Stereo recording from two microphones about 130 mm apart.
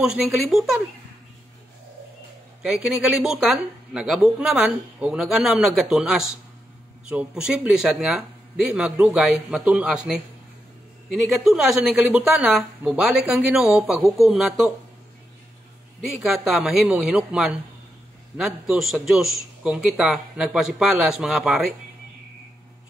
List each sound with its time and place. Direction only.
0.0 s speech: 5° right (ahead or behind)
2.6 s speech: 5° right (ahead or behind)
11.4 s speech: 5° right (ahead or behind)
16.1 s speech: centre (ahead or behind)